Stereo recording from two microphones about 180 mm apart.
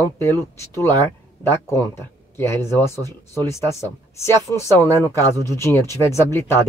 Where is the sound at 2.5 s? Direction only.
15° left (ahead or behind).